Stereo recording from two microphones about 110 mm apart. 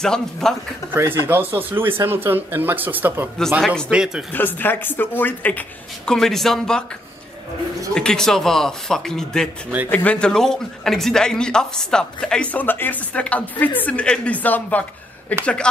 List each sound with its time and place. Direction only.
0.0 s speech: 5° left (ahead or behind)
0.9 s speech: 20° right (ahead or behind)
4.3 s a man's voice: 15° left (ahead or behind)
6.1 s speech: 5° left (ahead or behind)
7.9 s a man's voice: 5° left (ahead or behind)